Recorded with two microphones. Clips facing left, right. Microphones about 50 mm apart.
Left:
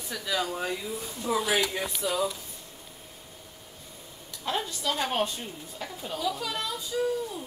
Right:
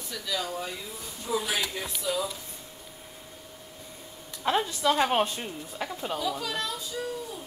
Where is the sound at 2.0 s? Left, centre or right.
Centre.